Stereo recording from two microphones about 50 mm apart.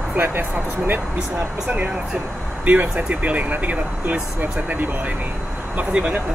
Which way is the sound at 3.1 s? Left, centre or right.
Right.